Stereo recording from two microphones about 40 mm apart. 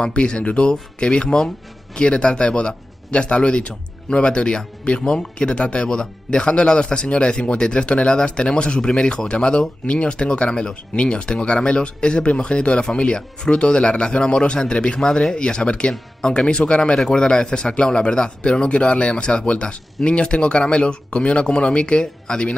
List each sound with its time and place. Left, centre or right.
0.0 s speech: left
15.0 s speech: centre